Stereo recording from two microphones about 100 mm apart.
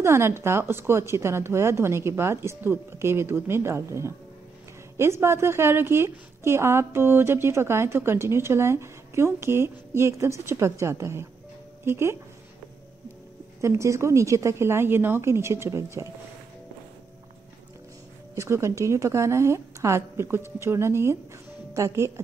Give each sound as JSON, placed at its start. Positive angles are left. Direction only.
{"t": 0.0, "sound": "a woman's voice", "side_deg": -25}
{"t": 13.6, "sound": "a woman's voice", "side_deg": -30}
{"t": 18.3, "sound": "a woman's voice", "side_deg": -30}